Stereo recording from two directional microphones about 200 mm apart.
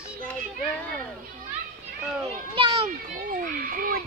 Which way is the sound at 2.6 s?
25° right (ahead or behind).